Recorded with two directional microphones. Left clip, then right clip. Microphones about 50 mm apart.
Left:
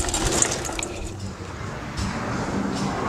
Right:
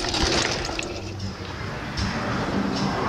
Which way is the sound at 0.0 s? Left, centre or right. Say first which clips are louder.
Right 2 dB; left.